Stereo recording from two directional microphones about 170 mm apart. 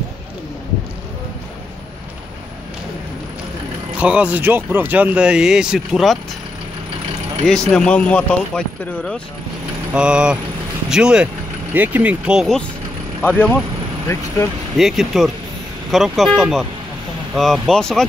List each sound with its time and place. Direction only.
4.0 s speech: 5° right (ahead or behind)
7.4 s speech: 5° left (ahead or behind)
14.8 s speech: centre (ahead or behind)